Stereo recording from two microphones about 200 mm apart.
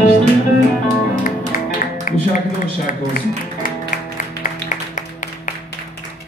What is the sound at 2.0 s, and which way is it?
Music, 40° left (ahead or behind).